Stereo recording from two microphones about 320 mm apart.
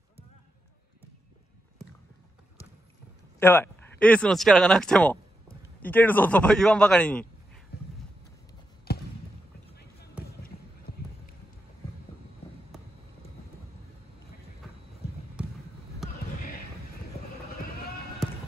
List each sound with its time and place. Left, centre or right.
3.3 s a man's voice: centre
8.9 s basketball bounce: left